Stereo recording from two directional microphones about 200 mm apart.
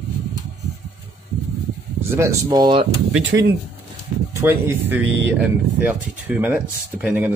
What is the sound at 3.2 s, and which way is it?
Speech, 65° right (ahead or behind).